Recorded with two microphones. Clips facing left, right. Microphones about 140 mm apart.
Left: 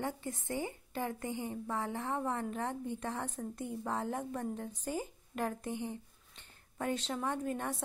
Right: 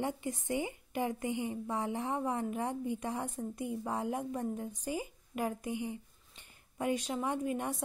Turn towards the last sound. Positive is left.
turn(degrees=-10)  # may be behind; listen again after turning